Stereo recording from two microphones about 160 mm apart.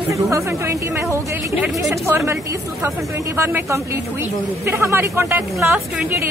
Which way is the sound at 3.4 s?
15° right (ahead or behind).